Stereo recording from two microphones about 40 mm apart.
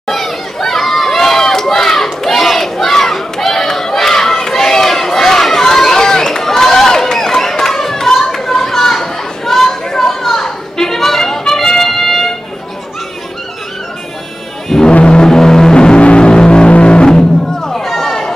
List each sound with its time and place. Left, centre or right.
0.0 s run: centre
2.2 s crowd: centre
14.9 s a sound: left
15.2 s music: centre